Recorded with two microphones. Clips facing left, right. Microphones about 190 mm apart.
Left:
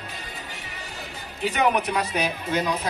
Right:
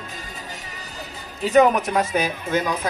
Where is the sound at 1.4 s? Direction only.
45° right (ahead or behind).